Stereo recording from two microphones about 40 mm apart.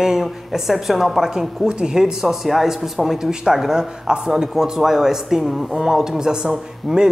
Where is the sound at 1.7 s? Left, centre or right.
Right.